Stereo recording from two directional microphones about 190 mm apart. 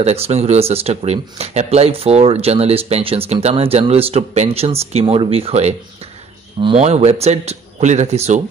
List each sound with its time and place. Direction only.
0.0 s speech: 35° right (ahead or behind)